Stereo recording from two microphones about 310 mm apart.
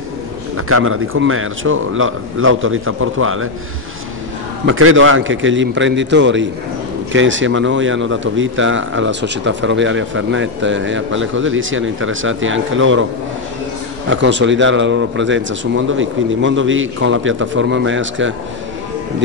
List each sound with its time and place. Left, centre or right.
0.6 s a man's voice: right
4.6 s a man's voice: right
14.0 s a man's voice: right